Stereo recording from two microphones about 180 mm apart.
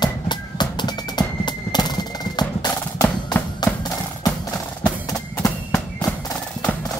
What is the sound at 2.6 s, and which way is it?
Percussion, 20° left (ahead or behind).